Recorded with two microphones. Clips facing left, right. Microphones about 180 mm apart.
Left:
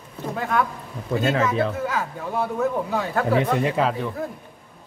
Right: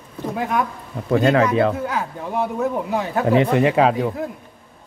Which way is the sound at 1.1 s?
70° right (ahead or behind).